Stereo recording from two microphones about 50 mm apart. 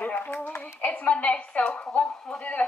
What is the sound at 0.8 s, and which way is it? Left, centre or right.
A woman's voice, left.